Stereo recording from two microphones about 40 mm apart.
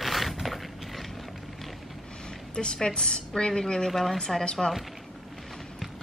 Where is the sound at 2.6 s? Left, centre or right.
Centre.